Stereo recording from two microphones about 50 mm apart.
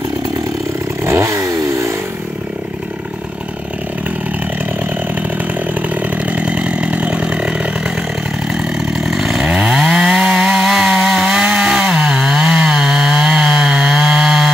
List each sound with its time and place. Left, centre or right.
1.0 s chainsaw: right
5.8 s chainsaw: right; by 14.5 s centre